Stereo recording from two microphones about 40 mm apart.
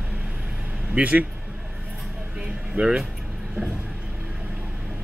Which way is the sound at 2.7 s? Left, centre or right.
Right.